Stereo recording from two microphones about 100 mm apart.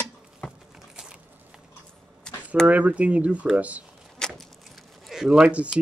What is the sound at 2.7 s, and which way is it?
A man's voice, 15° right (ahead or behind).